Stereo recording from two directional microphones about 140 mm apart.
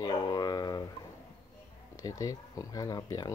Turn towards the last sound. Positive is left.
turn(degrees=25)  # may be behind; listen again after turning